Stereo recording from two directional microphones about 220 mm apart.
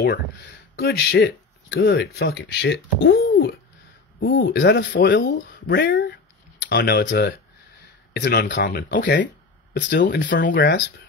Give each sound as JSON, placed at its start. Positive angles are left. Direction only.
{"t": 0.7, "sound": "speech", "side_deg": 50}